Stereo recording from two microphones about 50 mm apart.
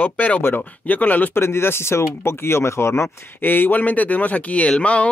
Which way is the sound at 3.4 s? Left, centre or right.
Left.